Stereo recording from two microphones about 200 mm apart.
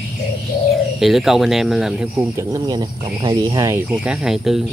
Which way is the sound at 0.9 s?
Centre (ahead or behind).